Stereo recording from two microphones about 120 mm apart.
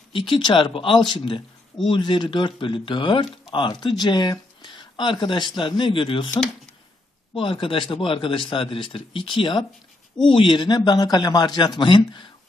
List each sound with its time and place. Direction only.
0.1 s a man's voice: 45° left (ahead or behind)
7.3 s a man's voice: 45° left (ahead or behind)